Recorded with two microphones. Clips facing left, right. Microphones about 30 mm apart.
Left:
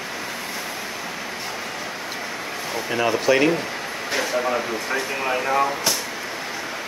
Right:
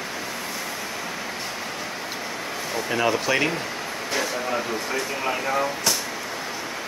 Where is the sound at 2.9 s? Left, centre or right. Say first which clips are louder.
Left 3 dB; centre.